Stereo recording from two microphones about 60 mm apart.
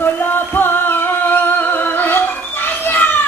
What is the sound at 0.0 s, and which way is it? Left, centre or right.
Music, left.